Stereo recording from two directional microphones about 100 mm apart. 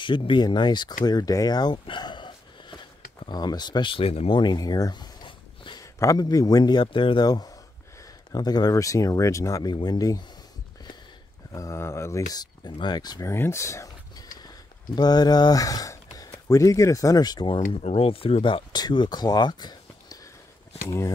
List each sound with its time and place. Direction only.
0.0 s a man's voice: 55° left (ahead or behind)
3.9 s speech: 80° left
4.4 s a sound: 45° left (ahead or behind)
5.8 s a man's voice: 35° left (ahead or behind); by 7.2 s 55° left (ahead or behind)
7.2 s speech: 40° left (ahead or behind)
9.7 s speech: 45° left (ahead or behind)
11.5 s speech: 30° left (ahead or behind)
12.3 s a man's voice: 40° left (ahead or behind)
13.2 s speech: 25° left (ahead or behind); by 17.5 s 40° left (ahead or behind)
17.5 s speech: 75° left (ahead or behind); by 18.8 s 60° left (ahead or behind)
18.8 s speech: 45° left (ahead or behind)